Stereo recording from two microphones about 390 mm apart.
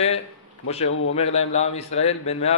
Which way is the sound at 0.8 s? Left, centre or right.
Left.